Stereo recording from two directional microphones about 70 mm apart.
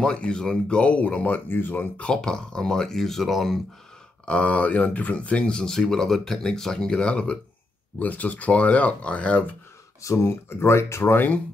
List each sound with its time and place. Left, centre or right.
0.0 s speech: centre; by 2.0 s left
2.0 s speech: centre
4.3 s speech: centre
10.0 s speech: left